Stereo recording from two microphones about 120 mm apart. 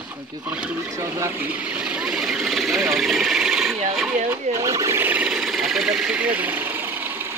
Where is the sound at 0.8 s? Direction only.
25° right (ahead or behind); by 3.7 s 5° right (ahead or behind).